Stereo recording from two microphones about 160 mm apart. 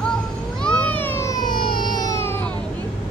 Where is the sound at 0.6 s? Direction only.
10° left (ahead or behind).